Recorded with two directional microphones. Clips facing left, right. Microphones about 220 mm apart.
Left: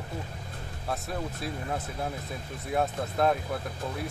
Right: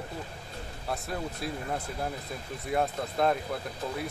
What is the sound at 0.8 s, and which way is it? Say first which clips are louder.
Speech: left 1 dB; centre (ahead or behind).